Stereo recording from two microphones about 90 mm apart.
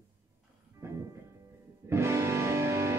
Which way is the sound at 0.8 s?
30° right (ahead or behind).